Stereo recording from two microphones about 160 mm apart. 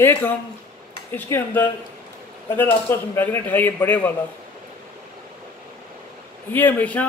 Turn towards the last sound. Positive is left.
turn(degrees=10)  # may be behind; listen again after turning